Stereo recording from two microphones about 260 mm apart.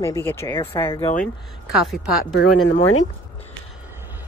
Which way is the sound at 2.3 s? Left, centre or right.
Left.